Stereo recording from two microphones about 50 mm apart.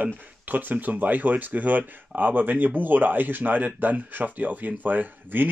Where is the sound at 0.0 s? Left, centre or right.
Right.